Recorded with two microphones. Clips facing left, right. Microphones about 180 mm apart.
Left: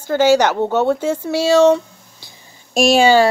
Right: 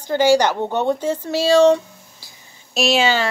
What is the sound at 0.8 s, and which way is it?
Speech, 10° left (ahead or behind).